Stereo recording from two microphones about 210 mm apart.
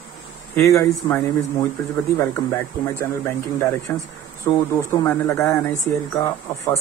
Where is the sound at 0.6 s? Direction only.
15° left (ahead or behind).